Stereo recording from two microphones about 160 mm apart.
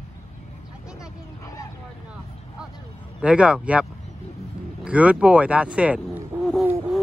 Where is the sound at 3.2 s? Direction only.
5° right (ahead or behind).